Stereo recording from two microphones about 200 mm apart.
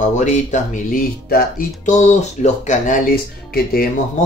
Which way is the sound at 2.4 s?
35° left (ahead or behind).